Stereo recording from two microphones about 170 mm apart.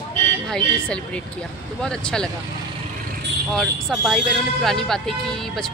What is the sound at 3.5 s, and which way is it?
Speech, centre (ahead or behind).